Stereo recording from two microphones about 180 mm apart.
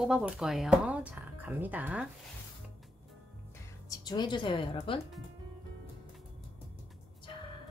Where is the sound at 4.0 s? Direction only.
25° left (ahead or behind).